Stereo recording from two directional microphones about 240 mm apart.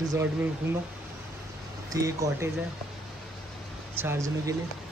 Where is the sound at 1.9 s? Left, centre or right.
Centre.